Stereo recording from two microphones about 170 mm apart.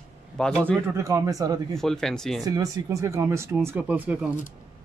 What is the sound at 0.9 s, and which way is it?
Speech, 15° right (ahead or behind).